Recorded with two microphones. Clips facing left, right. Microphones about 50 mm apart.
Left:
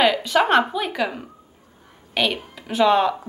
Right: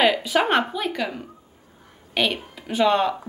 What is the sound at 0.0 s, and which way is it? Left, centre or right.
Speech, centre.